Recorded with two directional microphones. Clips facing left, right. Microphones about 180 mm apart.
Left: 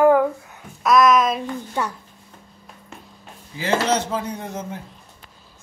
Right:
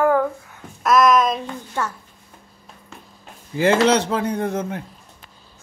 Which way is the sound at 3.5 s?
60° right (ahead or behind).